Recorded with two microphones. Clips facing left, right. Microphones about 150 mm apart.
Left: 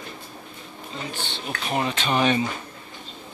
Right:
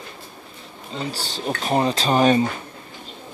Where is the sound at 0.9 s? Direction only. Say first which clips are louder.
Right 5 dB; 35° right (ahead or behind).